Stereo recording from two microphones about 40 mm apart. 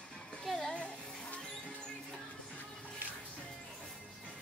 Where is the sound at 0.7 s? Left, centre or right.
Left.